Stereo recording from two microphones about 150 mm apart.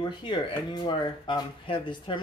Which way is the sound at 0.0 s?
30° left (ahead or behind).